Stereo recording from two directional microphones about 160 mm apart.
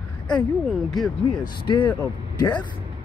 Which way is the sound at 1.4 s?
30° left (ahead or behind).